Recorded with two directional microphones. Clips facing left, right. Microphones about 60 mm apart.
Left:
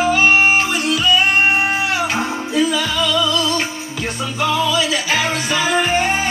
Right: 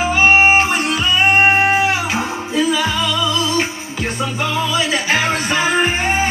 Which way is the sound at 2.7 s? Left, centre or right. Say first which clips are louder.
Even; right.